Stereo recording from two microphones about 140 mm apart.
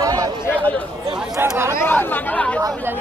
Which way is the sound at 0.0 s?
25° right (ahead or behind).